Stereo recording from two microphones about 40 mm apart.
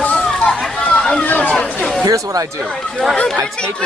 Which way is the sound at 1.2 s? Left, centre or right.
Left.